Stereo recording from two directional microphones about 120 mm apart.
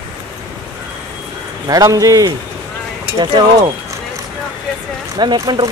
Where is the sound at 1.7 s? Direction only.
30° right (ahead or behind).